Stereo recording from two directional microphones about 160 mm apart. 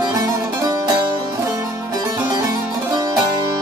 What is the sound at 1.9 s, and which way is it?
Music, 25° right (ahead or behind).